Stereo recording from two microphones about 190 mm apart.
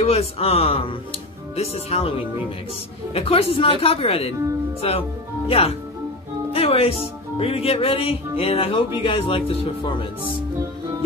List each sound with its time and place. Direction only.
0.0 s speech: 30° left (ahead or behind)
9.0 s music: 30° left (ahead or behind)